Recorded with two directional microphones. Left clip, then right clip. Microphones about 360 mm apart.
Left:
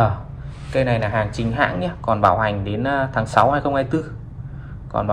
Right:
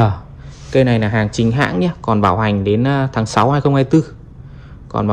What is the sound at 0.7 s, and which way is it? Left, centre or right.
Speech, right.